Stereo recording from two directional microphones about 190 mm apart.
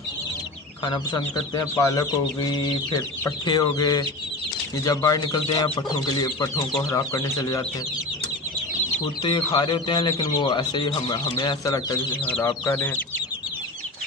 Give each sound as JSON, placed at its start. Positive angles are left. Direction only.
{"t": 0.8, "sound": "speech", "side_deg": 25}
{"t": 9.0, "sound": "speech", "side_deg": 25}